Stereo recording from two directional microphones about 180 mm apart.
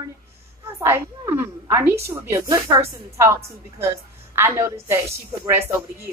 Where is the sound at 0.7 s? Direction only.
15° right (ahead or behind).